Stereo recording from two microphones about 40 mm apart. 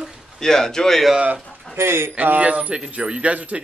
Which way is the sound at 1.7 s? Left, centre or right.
Right.